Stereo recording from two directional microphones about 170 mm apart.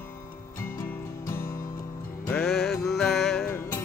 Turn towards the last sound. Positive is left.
turn(degrees=5)  # may be behind; listen again after turning